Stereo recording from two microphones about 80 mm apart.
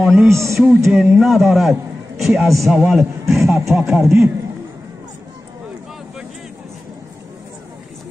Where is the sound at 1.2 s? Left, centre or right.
Centre.